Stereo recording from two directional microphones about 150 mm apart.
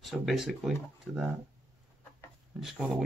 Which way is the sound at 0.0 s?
Centre (ahead or behind).